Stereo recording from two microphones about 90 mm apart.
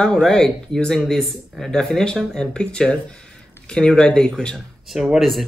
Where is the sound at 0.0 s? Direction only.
5° left (ahead or behind).